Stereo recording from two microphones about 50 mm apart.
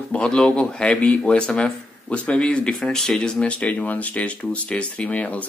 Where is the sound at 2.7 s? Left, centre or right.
Centre.